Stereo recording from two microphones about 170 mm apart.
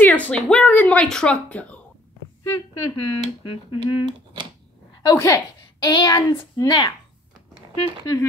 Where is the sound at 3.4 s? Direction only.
30° left (ahead or behind).